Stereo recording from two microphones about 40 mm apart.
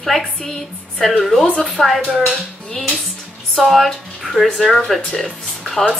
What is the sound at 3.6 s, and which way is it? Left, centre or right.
A woman's voice, centre.